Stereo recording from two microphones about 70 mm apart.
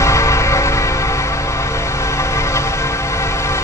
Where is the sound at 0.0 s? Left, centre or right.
Left.